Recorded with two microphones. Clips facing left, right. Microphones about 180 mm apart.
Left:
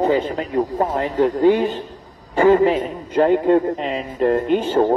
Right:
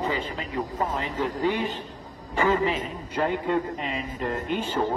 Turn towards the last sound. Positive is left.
turn(degrees=50)  # may be behind; listen again after turning